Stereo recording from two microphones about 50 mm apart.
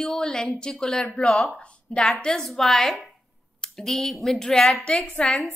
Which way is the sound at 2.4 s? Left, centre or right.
Centre.